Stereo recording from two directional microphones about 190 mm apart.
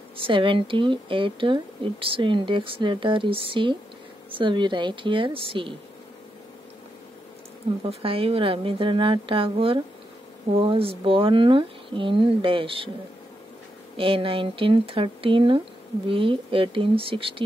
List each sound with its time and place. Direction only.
0.2 s speech: 25° right (ahead or behind)
7.9 s speech: 30° right (ahead or behind)
13.9 s speech: 30° right (ahead or behind)